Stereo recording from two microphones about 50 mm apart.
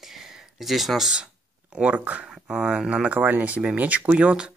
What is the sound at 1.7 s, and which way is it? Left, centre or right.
Speech, right.